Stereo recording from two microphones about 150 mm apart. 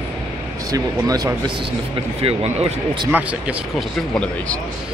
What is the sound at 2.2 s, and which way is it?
Speech, 40° right (ahead or behind).